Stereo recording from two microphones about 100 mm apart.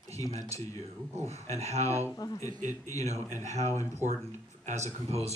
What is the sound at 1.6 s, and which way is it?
Speech, 90° right.